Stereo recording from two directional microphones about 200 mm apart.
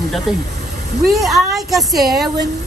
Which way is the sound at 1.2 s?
Centre (ahead or behind).